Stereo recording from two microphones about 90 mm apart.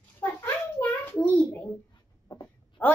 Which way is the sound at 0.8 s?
45° left (ahead or behind).